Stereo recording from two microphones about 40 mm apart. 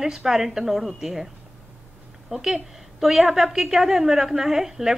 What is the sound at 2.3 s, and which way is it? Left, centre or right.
A woman's voice, centre.